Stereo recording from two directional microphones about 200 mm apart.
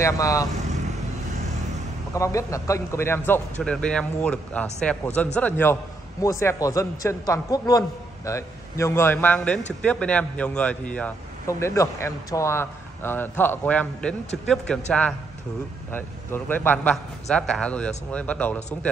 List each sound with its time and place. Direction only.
0.0 s a man's voice: 15° left (ahead or behind)
2.1 s a man's voice: 15° left (ahead or behind)